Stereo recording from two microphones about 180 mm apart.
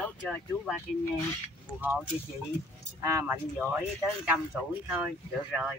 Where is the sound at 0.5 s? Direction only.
15° left (ahead or behind).